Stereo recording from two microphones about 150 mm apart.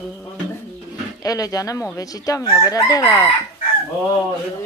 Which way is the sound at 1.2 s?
25° left (ahead or behind).